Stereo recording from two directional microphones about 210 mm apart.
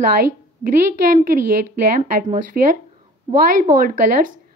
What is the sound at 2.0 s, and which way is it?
Speech, 40° right (ahead or behind).